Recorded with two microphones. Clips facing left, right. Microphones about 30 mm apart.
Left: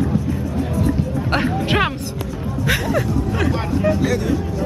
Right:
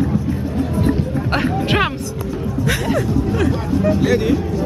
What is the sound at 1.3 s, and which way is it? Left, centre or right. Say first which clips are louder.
Speech: right 1 dB; centre.